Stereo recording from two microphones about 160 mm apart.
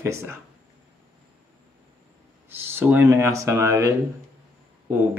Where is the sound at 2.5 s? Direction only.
15° right (ahead or behind).